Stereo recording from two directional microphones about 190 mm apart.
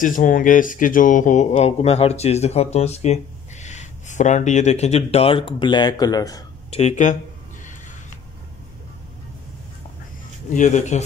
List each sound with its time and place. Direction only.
0.0 s speech: 45° left (ahead or behind); by 6.4 s 20° left (ahead or behind)
6.7 s speech: 35° left (ahead or behind)
10.5 s speech: 40° left (ahead or behind)